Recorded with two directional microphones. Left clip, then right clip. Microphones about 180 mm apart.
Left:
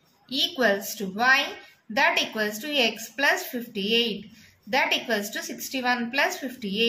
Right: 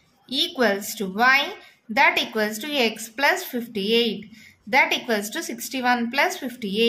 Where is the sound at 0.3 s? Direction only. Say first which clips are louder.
Right 1 dB; 40° right (ahead or behind).